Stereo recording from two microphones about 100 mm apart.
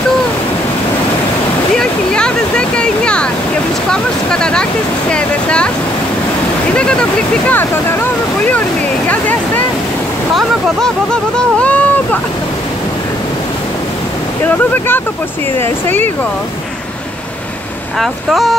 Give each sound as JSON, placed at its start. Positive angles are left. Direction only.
{"t": 1.8, "sound": "a sound", "side_deg": 10}
{"t": 3.9, "sound": "speech", "side_deg": 5}
{"t": 6.7, "sound": "speech", "side_deg": 10}
{"t": 10.3, "sound": "speech", "side_deg": 5}
{"t": 14.4, "sound": "speech", "side_deg": 20}
{"t": 17.9, "sound": "speech", "side_deg": 0}